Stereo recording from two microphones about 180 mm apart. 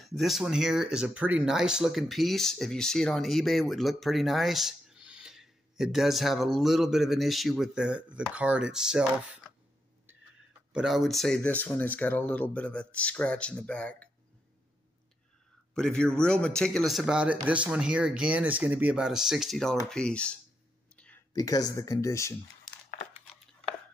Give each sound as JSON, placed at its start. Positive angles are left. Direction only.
{"t": 0.0, "sound": "speech", "side_deg": 0}
{"t": 10.7, "sound": "speech", "side_deg": 0}
{"t": 15.7, "sound": "speech", "side_deg": 5}
{"t": 20.9, "sound": "a sound", "side_deg": 5}
{"t": 21.3, "sound": "speech", "side_deg": 20}